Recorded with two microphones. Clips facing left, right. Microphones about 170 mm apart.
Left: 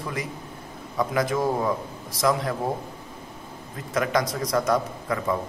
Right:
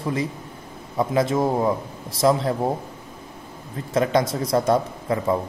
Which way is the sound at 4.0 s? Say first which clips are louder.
Right 4 dB; 25° right (ahead or behind).